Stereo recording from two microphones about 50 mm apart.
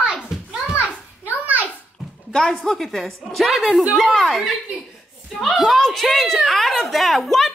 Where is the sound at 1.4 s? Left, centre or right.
Right.